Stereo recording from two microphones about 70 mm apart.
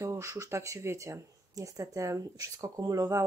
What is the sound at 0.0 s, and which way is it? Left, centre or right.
Speech, right.